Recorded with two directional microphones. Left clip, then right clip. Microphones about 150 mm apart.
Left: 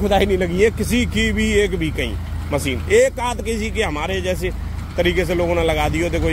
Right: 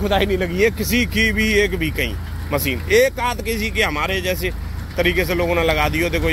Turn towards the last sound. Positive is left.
turn(degrees=20)  # may be behind; listen again after turning